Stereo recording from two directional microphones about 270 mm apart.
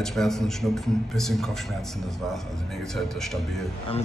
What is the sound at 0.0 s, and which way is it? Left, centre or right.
A man's voice, centre.